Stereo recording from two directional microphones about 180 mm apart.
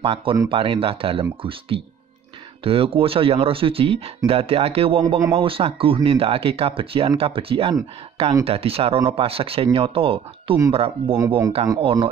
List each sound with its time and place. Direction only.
0.0 s speech: 30° right (ahead or behind)
5.0 s speech: 20° right (ahead or behind)
5.3 s speech: 30° right (ahead or behind)
11.1 s speech: 15° right (ahead or behind)
11.6 s speech: 25° right (ahead or behind)